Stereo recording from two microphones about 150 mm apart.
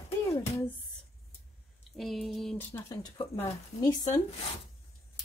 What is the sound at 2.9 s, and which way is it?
Speech, 25° left (ahead or behind).